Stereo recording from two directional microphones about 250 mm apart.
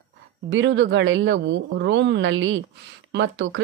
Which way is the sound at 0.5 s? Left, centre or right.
Right.